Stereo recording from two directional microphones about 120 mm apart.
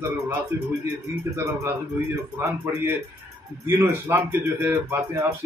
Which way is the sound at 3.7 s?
15° right (ahead or behind).